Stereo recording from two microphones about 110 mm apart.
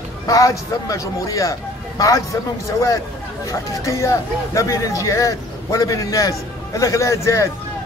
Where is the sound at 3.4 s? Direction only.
30° left (ahead or behind).